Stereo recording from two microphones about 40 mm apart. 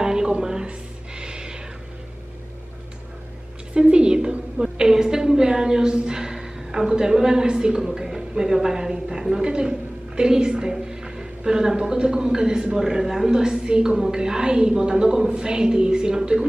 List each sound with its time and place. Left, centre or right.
0.0 s music: centre
3.7 s a woman's voice: right